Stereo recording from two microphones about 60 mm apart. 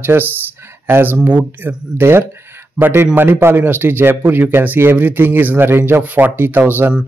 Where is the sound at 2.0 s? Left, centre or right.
Right.